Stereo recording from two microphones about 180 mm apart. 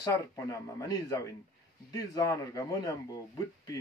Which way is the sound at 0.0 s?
20° left (ahead or behind).